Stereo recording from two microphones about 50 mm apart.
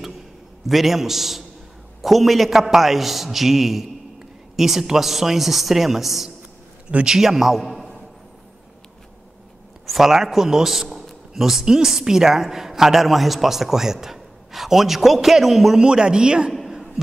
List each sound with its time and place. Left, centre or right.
0.7 s a man's voice: centre
9.8 s a man's voice: centre
15.8 s a man's voice: centre
16.5 s a sound: centre